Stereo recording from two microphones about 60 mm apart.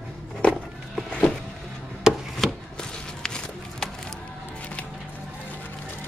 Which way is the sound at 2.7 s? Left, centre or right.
Centre.